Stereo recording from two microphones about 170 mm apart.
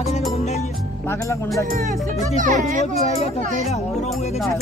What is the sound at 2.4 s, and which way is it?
Speech, 50° right (ahead or behind).